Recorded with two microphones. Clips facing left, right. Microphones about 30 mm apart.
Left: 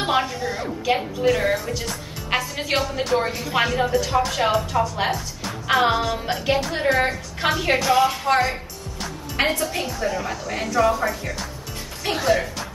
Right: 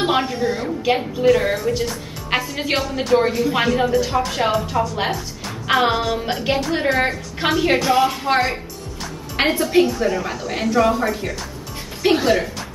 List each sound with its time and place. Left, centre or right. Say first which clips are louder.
0.0 s a woman's voice: right 3 dB; centre
8.3 s a woman's voice: right 1 dB; right
9.7 s a woman's voice: right 8 dB; right